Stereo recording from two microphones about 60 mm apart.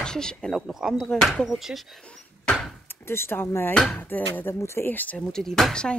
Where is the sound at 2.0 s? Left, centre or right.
Centre.